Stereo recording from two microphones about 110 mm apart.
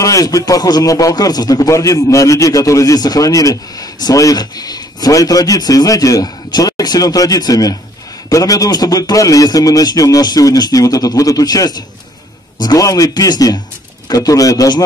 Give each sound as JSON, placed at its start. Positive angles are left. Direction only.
{"t": 0.0, "sound": "a man's voice", "side_deg": 30}